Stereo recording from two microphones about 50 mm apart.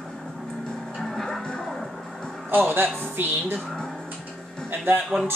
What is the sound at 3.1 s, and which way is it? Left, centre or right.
Speech, right.